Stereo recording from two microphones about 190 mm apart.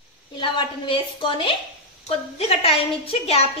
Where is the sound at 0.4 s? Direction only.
25° left (ahead or behind).